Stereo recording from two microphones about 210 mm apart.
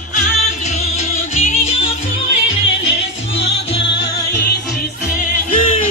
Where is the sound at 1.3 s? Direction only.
35° left (ahead or behind).